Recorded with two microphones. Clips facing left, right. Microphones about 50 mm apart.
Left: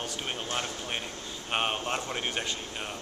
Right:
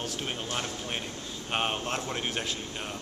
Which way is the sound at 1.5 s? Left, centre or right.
Centre.